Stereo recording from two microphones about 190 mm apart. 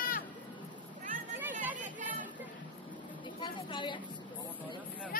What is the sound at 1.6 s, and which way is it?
Chatter, 10° right (ahead or behind).